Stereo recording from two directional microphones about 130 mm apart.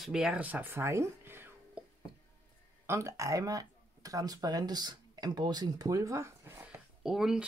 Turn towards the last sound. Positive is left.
turn(degrees=-5)  # may be behind; listen again after turning